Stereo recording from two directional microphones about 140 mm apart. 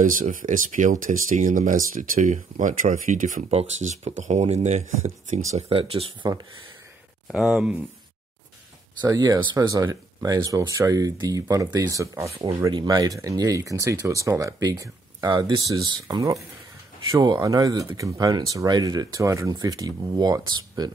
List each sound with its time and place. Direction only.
0.0 s speech: 75° right (ahead or behind)
3.4 s speech: 50° right (ahead or behind)
7.2 s speech: 5° right (ahead or behind)
9.0 s speech: 30° right (ahead or behind)